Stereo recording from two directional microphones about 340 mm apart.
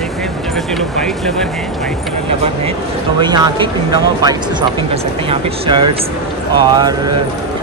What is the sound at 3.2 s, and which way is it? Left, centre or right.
Speech, centre.